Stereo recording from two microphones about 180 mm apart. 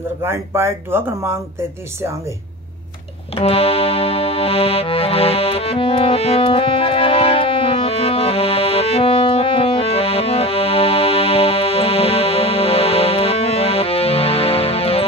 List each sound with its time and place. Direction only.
0.2 s speech: 15° right (ahead or behind)
3.3 s music: 35° left (ahead or behind)